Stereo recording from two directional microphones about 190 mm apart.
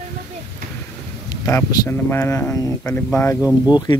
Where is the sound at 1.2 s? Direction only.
15° left (ahead or behind).